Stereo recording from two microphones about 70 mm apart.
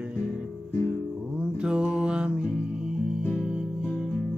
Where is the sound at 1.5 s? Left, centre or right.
Centre.